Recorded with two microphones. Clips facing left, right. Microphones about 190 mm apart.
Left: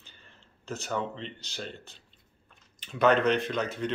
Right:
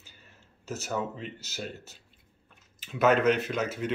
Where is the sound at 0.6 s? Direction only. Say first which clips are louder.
Even; 5° right (ahead or behind).